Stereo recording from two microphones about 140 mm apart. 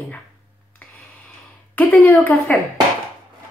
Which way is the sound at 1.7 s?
10° left (ahead or behind).